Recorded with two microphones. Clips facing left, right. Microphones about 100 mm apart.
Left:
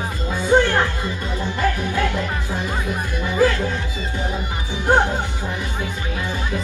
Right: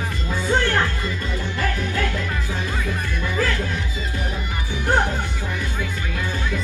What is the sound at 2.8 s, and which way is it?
Speech, 20° left (ahead or behind).